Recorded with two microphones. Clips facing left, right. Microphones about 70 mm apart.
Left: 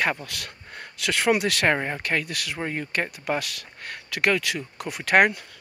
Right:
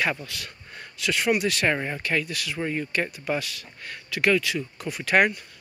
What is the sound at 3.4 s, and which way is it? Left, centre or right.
Speech, left.